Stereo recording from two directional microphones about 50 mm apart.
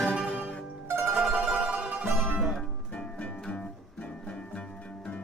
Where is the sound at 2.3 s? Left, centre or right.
Centre.